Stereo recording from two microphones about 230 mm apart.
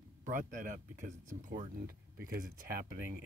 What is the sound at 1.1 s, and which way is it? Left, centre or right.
Speech, right.